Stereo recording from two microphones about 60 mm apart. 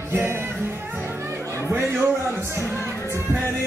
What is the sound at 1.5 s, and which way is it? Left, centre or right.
Speech, right.